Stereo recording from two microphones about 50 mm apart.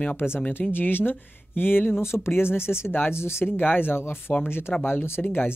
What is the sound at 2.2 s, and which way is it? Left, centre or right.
Speech, left.